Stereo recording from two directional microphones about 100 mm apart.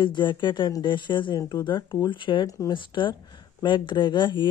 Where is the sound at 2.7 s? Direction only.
55° left (ahead or behind).